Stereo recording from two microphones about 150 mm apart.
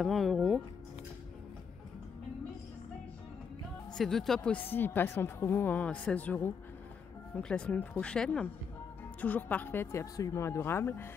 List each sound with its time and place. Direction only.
0.0 s speech: centre (ahead or behind)
3.9 s a woman's voice: centre (ahead or behind)